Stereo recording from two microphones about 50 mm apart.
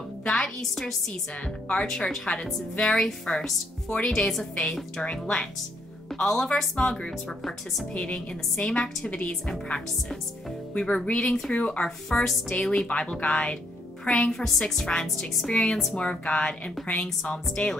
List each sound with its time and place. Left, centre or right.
0.2 s music: centre
0.6 s a woman's voice: centre
1.3 s a woman's voice: centre
5.0 s a woman's voice: centre
7.2 s speech: centre
7.9 s a woman's voice: left
10.7 s speech: left
14.3 s a woman's voice: centre
17.6 s speech: left